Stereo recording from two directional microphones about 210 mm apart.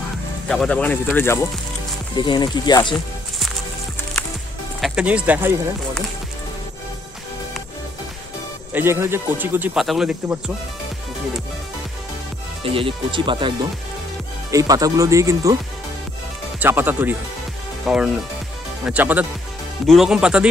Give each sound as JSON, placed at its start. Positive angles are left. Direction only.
{"t": 0.5, "sound": "speech", "side_deg": 5}
{"t": 4.7, "sound": "speech", "side_deg": -5}
{"t": 8.7, "sound": "speech", "side_deg": -10}
{"t": 12.6, "sound": "speech", "side_deg": -25}
{"t": 14.5, "sound": "speech", "side_deg": -15}
{"t": 16.5, "sound": "speech", "side_deg": -10}